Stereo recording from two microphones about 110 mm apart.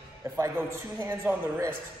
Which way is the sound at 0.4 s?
25° right (ahead or behind).